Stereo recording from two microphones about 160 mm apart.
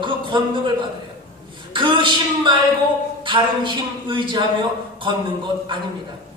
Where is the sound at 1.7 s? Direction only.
30° right (ahead or behind).